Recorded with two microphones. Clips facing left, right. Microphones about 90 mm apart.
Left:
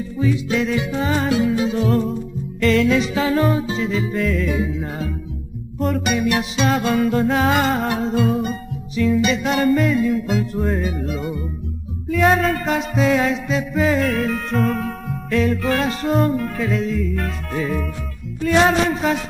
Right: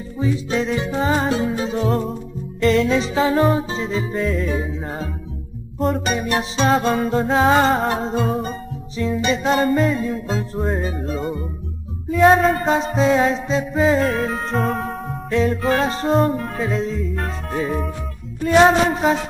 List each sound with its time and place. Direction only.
0.2 s music: 30° right (ahead or behind)